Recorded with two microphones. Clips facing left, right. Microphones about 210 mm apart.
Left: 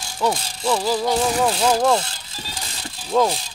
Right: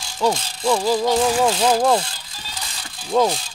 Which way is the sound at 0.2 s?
5° left (ahead or behind).